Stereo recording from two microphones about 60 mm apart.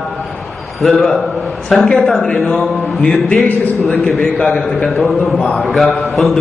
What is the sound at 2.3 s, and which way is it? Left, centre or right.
A man's voice, left.